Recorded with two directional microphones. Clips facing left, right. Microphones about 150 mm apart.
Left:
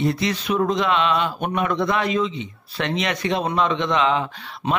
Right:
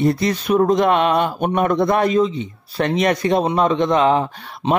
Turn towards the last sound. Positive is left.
turn(degrees=-45)  # may be behind; listen again after turning